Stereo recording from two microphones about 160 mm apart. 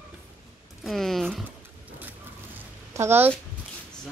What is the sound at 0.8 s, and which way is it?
Speech, centre (ahead or behind).